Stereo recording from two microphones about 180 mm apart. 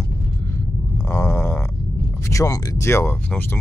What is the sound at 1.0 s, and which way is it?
Speech, 15° left (ahead or behind).